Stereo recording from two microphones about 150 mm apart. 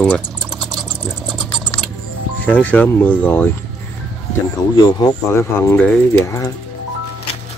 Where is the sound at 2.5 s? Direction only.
10° left (ahead or behind).